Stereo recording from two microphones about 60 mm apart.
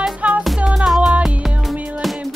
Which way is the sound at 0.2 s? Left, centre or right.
Right.